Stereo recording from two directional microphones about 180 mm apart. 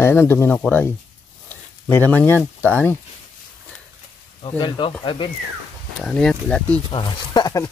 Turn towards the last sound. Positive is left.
turn(degrees=20)  # may be behind; listen again after turning